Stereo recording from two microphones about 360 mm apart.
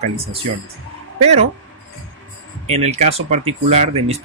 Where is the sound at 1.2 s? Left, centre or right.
Centre.